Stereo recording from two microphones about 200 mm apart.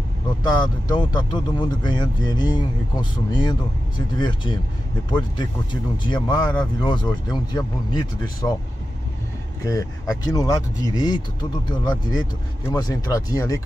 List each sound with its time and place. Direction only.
0.4 s speech: 20° left (ahead or behind)
8.4 s speech: 5° left (ahead or behind)
9.7 s speech: 15° left (ahead or behind)